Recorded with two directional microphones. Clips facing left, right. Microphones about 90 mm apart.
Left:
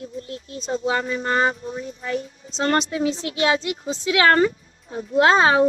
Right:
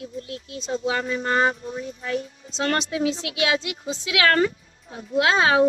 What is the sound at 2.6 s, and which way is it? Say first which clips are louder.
A woman's voice: left 2 dB; 35° left (ahead or behind).